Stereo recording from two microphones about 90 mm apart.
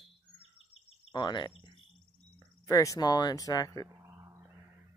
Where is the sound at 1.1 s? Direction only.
55° left (ahead or behind).